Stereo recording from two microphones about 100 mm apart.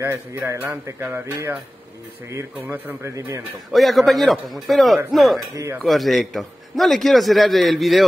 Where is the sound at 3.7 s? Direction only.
Centre (ahead or behind).